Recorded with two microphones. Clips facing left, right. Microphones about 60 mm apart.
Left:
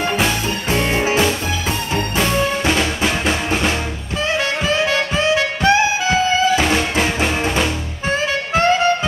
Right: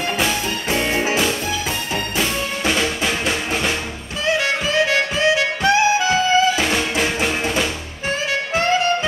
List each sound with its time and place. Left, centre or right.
2.1 s music: centre
4.8 s music: left
6.6 s music: centre
8.1 s music: left